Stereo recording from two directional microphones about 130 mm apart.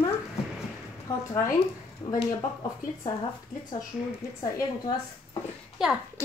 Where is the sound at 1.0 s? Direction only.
20° left (ahead or behind).